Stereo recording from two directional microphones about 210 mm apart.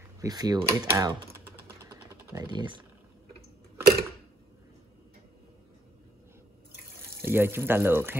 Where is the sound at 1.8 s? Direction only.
15° right (ahead or behind).